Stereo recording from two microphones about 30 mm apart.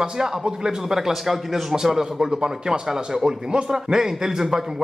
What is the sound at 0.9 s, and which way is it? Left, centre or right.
Speech, centre.